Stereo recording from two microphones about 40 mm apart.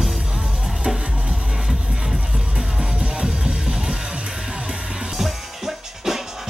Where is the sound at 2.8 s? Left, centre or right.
Right.